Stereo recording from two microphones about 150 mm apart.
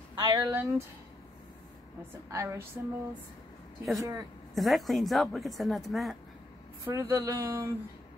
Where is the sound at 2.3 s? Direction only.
20° right (ahead or behind).